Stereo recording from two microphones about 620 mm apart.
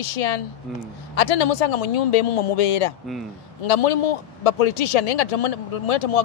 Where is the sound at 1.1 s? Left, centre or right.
Left.